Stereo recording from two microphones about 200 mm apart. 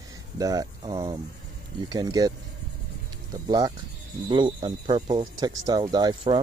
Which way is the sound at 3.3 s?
20° right (ahead or behind).